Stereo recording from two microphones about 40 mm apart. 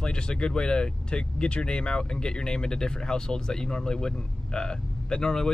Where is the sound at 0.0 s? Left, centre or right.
Left.